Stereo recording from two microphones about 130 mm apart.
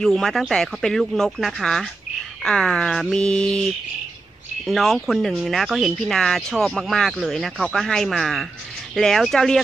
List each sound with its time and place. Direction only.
0.0 s speech: centre (ahead or behind)
4.6 s speech: centre (ahead or behind)